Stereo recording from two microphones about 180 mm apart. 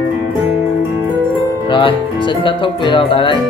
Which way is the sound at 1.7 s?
25° left (ahead or behind).